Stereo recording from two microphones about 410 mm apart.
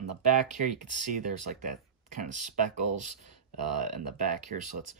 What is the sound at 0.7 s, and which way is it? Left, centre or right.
Speech, centre.